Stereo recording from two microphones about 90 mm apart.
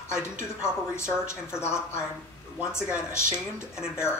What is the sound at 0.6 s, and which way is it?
A woman's voice, 30° left (ahead or behind).